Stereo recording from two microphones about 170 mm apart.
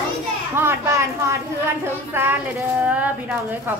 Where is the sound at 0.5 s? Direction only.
15° right (ahead or behind).